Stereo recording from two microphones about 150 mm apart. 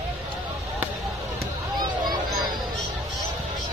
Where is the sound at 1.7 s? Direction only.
30° right (ahead or behind).